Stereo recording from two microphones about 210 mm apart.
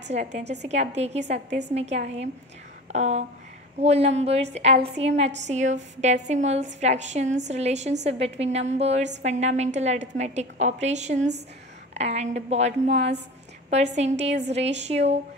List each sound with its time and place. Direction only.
0.1 s a woman's voice: 35° right (ahead or behind)